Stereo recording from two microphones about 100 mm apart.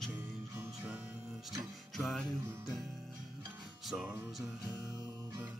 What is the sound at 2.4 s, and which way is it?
Music, 25° right (ahead or behind).